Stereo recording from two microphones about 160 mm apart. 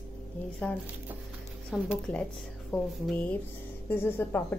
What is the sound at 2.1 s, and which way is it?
A woman's voice, 10° left (ahead or behind).